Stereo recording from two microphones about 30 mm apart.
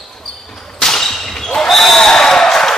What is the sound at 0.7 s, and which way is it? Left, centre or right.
Whip, centre.